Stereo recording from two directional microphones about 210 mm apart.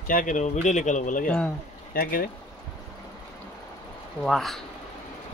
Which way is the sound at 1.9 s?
45° left (ahead or behind).